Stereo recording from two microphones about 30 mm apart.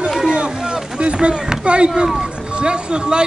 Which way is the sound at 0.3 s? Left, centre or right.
Right.